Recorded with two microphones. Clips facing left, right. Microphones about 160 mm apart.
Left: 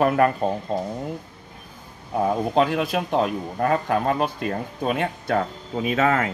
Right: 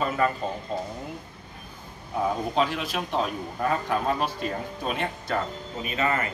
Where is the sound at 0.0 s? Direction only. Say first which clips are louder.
Left 7 dB; 65° left (ahead or behind).